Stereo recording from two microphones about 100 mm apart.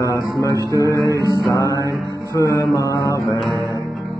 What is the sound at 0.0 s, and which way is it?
Music, 35° left (ahead or behind).